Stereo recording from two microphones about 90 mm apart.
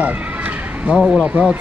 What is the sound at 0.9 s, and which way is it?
Speech, centre (ahead or behind).